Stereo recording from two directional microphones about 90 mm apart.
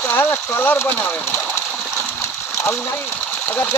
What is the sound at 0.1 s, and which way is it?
Speech, 25° left (ahead or behind).